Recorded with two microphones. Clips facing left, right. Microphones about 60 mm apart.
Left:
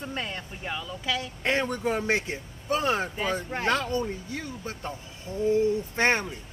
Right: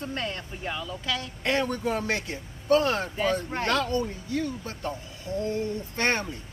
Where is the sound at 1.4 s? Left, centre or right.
Left; by 3.7 s centre.